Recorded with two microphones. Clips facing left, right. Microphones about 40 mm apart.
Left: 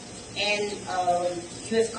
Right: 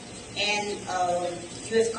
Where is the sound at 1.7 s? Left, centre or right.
Centre.